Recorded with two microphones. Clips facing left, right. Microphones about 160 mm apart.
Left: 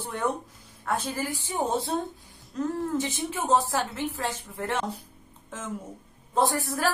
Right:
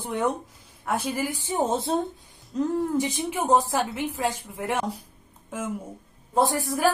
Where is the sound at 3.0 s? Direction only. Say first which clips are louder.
Right 3 dB; 15° right (ahead or behind).